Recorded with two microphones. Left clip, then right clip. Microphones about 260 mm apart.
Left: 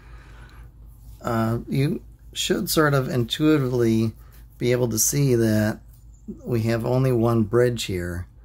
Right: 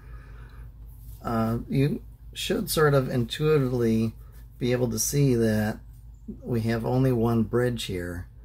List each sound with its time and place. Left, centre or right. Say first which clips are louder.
1.2 s speech: left 3 dB; left